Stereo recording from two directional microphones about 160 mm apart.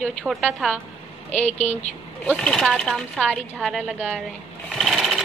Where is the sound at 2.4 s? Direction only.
5° left (ahead or behind).